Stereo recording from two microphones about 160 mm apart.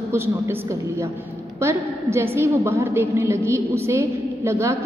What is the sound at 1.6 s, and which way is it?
A woman's voice, 15° right (ahead or behind).